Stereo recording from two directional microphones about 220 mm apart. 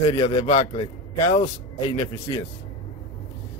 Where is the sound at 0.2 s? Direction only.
20° left (ahead or behind).